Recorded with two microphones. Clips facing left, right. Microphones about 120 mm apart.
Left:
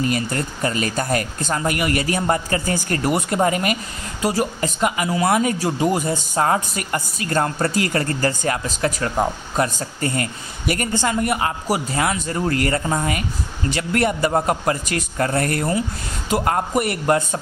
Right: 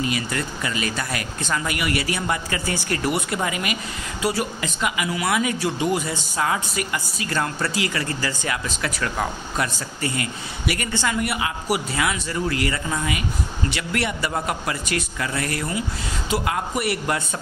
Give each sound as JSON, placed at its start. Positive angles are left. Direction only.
{"t": 0.0, "sound": "speech", "side_deg": 40}
{"t": 9.8, "sound": "a man's voice", "side_deg": 40}